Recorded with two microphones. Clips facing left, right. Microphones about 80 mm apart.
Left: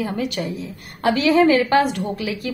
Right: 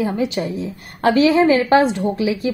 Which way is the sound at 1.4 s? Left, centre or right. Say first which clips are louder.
Right 2 dB; right.